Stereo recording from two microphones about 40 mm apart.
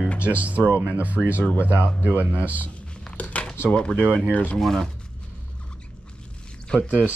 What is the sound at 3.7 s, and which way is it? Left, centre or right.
Speech, left.